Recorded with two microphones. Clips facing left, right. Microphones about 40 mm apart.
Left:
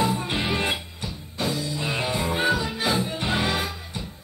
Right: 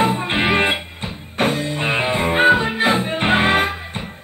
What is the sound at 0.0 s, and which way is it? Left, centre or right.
Music, right.